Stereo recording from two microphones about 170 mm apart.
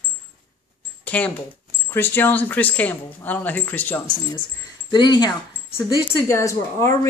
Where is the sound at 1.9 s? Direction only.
10° left (ahead or behind).